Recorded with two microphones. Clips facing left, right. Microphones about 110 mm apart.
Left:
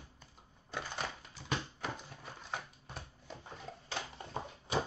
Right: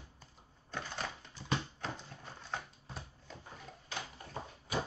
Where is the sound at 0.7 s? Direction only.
10° left (ahead or behind).